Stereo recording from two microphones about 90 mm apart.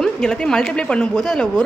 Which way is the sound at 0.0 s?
10° left (ahead or behind).